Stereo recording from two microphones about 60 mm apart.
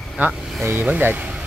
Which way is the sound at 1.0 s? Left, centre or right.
Right.